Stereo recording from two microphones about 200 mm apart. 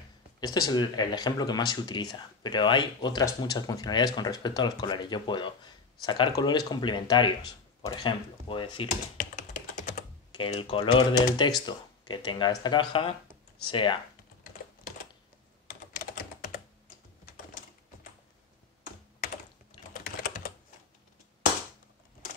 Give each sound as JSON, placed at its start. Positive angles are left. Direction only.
{"t": 0.4, "sound": "speech", "side_deg": 20}
{"t": 9.2, "sound": "computer keyboard", "side_deg": 45}
{"t": 10.3, "sound": "speech", "side_deg": 25}
{"t": 19.9, "sound": "typing", "side_deg": 45}